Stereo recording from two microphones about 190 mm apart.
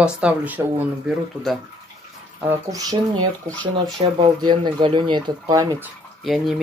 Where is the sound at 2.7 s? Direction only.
20° right (ahead or behind).